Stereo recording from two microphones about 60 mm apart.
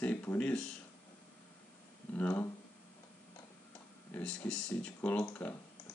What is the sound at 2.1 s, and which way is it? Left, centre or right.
Speech, left.